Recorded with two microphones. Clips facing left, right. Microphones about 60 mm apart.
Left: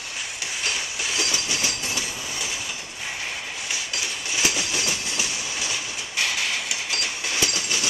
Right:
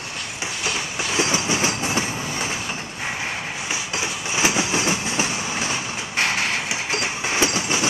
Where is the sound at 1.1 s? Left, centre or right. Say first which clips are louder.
Right 7 dB; right.